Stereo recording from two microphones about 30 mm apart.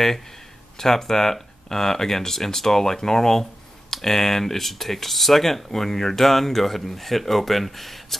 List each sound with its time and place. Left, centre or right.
0.7 s speech: centre